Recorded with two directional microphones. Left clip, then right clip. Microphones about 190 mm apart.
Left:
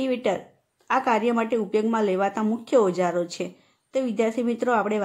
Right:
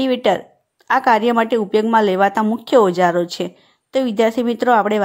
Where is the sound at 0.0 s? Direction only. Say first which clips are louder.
Right 8 dB; 35° right (ahead or behind).